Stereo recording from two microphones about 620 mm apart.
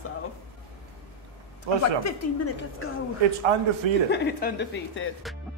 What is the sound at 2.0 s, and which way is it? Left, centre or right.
A woman's voice, left.